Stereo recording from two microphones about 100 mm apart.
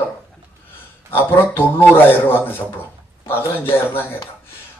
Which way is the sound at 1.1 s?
20° left (ahead or behind).